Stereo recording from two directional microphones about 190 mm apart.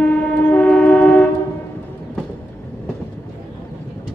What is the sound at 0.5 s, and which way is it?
Vehicle, 10° left (ahead or behind).